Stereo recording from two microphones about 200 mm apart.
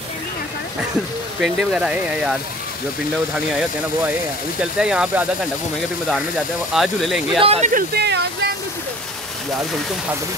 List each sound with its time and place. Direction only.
1.4 s speech: 5° right (ahead or behind)
4.7 s speech: 5° right (ahead or behind)
6.7 s speech: centre (ahead or behind)
7.3 s speech: 30° right (ahead or behind)
7.9 s speech: 55° right (ahead or behind)